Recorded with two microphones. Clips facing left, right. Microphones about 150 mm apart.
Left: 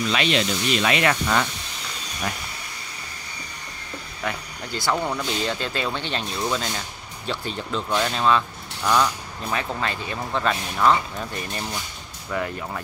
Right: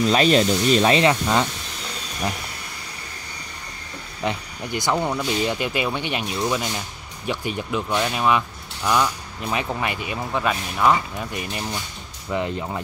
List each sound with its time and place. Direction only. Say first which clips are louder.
0.0 s speech: right 6 dB; 40° right (ahead or behind); by 1.5 s 20° right (ahead or behind)
4.2 s speech: right 4 dB; 20° right (ahead or behind)
12.3 s speech: right 3 dB; 20° right (ahead or behind)